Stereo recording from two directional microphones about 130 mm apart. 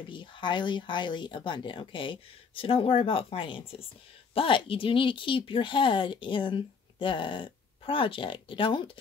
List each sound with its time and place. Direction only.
0.1 s speech: 40° left (ahead or behind)